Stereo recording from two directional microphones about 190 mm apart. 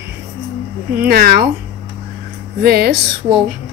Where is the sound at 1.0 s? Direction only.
55° right (ahead or behind).